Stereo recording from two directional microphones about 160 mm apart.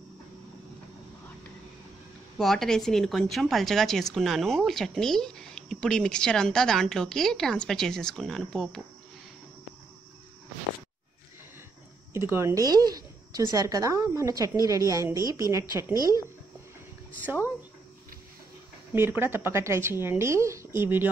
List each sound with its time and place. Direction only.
2.3 s a woman's voice: centre (ahead or behind)
12.1 s a woman's voice: 15° right (ahead or behind)
18.9 s speech: 15° right (ahead or behind)